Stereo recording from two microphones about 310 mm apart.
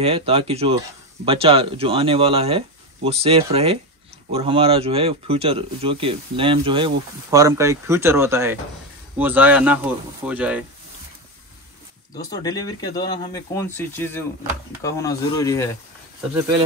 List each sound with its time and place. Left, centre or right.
0.0 s speech: centre
12.2 s speech: centre